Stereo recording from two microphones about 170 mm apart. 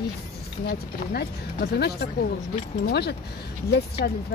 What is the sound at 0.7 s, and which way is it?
Speech, 65° left (ahead or behind).